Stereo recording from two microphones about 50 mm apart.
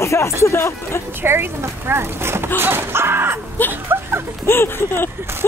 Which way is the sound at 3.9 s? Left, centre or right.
Right.